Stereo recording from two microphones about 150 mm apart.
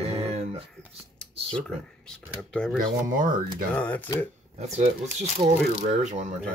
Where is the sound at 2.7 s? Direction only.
65° right (ahead or behind).